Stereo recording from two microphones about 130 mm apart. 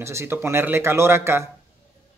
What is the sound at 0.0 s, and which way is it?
Speech, 20° right (ahead or behind).